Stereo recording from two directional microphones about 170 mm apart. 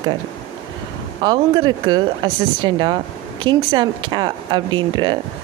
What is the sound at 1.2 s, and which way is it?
Speech, 25° right (ahead or behind).